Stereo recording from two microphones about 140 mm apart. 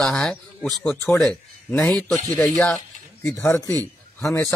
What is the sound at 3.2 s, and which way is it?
Speech, 20° left (ahead or behind).